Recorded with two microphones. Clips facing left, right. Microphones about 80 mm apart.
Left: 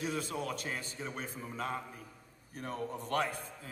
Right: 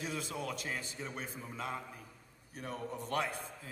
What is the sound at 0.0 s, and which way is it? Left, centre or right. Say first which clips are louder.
A man's voice: left 3 dB; left.